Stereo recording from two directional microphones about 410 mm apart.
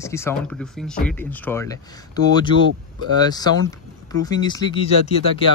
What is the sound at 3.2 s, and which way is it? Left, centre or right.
Speech, centre.